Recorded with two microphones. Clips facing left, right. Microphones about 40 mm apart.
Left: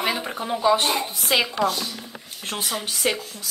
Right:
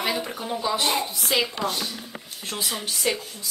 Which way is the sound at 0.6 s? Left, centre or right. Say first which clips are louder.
Left 5 dB; left.